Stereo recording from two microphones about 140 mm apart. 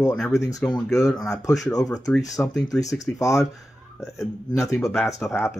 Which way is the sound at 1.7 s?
25° left (ahead or behind).